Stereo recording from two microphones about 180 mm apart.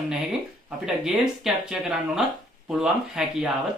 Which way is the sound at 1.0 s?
Centre (ahead or behind).